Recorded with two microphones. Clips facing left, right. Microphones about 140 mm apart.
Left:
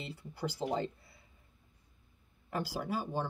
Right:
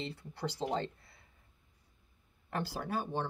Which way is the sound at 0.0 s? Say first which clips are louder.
Even; 5° left (ahead or behind).